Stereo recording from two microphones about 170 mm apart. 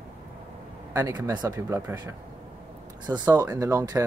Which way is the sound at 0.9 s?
20° right (ahead or behind).